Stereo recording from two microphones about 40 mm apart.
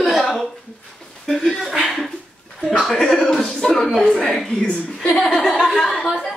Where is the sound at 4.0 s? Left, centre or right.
Left.